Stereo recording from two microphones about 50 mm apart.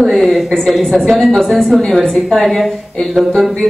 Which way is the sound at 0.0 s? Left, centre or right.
Centre.